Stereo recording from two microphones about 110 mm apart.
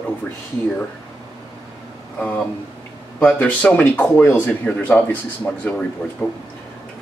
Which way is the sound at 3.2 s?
15° left (ahead or behind).